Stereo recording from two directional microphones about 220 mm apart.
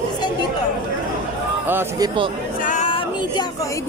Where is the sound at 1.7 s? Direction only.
15° right (ahead or behind).